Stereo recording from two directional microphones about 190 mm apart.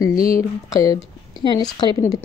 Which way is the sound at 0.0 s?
20° left (ahead or behind).